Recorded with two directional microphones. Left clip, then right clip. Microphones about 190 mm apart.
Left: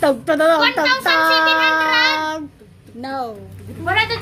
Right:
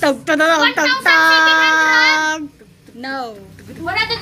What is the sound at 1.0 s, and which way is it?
Child singing, 10° left (ahead or behind).